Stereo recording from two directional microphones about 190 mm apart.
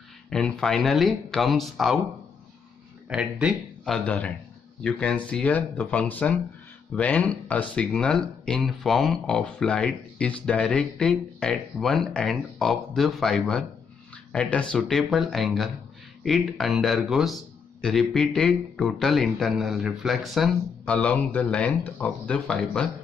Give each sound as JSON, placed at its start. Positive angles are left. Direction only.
{"t": 0.3, "sound": "speech", "side_deg": 5}
{"t": 3.1, "sound": "speech", "side_deg": -5}